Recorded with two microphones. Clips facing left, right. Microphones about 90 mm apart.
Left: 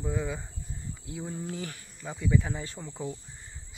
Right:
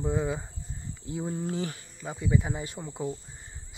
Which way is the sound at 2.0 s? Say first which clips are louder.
Even; centre (ahead or behind).